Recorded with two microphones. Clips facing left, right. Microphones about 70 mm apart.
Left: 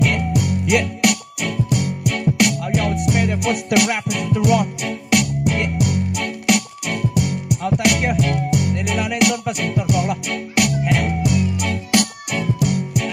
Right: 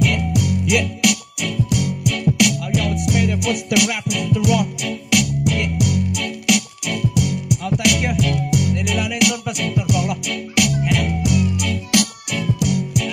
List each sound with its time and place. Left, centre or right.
0.0 s music: left